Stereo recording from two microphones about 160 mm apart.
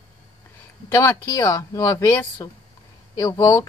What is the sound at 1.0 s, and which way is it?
Speech, 20° left (ahead or behind).